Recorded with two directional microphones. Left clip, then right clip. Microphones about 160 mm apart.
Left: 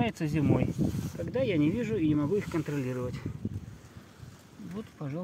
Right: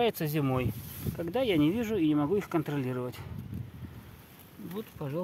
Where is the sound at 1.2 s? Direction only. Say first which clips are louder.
Right 1 dB; 35° right (ahead or behind).